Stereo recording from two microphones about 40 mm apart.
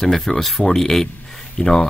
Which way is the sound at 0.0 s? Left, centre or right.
Centre.